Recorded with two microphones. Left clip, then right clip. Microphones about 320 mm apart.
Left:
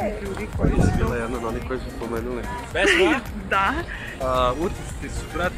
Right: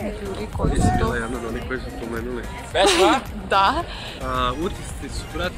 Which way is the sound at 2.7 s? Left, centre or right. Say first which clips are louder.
Right 2 dB; right.